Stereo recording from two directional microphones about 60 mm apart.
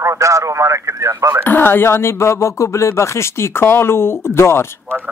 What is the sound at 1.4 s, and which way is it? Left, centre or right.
Speech, left.